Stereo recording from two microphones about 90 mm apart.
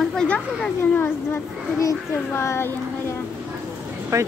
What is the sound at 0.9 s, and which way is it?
Speech, 25° left (ahead or behind).